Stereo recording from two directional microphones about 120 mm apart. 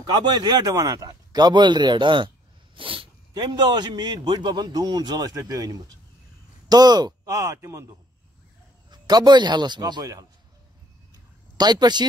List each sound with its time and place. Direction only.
0.0 s speech: 35° right (ahead or behind)
8.9 s speech: 35° right (ahead or behind)
11.5 s speech: 35° right (ahead or behind)